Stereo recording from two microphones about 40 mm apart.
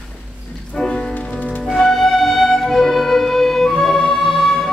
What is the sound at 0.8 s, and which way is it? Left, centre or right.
Music, centre.